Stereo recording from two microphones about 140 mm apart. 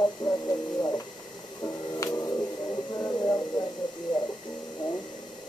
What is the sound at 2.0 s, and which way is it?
Music, 25° left (ahead or behind).